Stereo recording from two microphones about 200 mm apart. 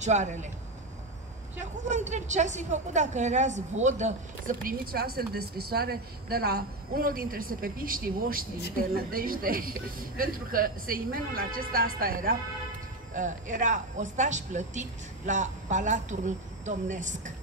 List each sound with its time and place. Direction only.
0.0 s speech: 35° right (ahead or behind)
1.6 s a woman's voice: 35° right (ahead or behind)